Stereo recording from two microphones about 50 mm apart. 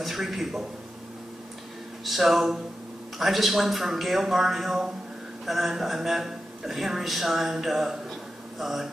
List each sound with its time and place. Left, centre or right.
0.0 s speech: centre
2.0 s speech: centre